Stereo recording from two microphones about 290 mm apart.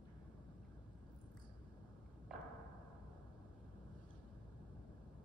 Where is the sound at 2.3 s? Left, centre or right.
Centre.